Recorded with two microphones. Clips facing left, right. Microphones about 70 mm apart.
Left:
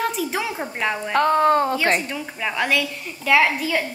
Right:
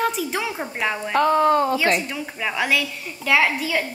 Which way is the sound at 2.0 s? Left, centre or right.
Centre.